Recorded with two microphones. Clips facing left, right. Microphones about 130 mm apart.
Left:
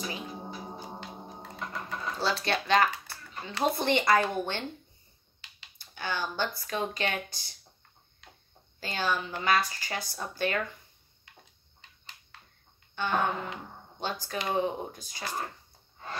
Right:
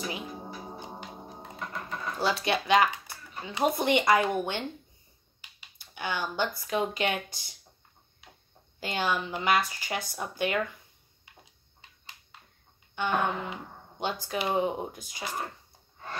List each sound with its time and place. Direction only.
0.0 s a sound: 5° right (ahead or behind)
0.9 s gong: centre (ahead or behind)
1.6 s sewing machine: centre (ahead or behind)
2.2 s speech: 15° right (ahead or behind)
8.7 s speech: 15° right (ahead or behind)
12.9 s speech: 15° right (ahead or behind)
15.2 s speech: 5° right (ahead or behind)